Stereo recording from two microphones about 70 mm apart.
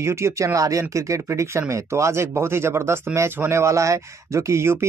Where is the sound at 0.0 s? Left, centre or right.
Right.